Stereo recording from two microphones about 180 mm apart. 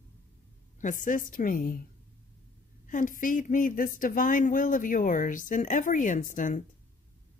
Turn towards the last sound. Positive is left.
turn(degrees=45)  # may be behind; listen again after turning